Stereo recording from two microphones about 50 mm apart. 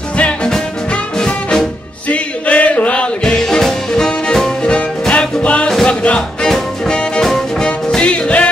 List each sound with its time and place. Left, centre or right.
0.2 s music: left
2.0 s music: left
3.3 s music: centre
4.7 s music: left
7.2 s music: centre
7.6 s music: centre